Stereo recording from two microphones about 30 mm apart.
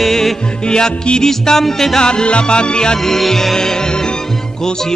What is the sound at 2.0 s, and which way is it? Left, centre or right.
Music, left.